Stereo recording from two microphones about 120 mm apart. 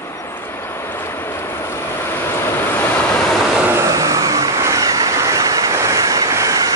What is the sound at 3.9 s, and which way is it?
Vehicle, 25° right (ahead or behind).